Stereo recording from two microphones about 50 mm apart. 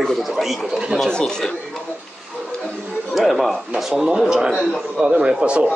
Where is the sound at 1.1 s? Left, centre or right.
Centre.